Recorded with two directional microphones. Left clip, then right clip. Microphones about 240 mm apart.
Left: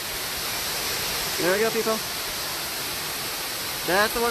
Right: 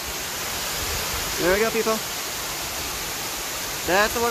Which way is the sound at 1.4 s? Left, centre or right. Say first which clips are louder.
Right 2 dB; centre.